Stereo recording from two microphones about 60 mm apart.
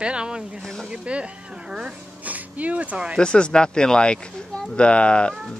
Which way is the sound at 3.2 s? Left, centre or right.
Centre.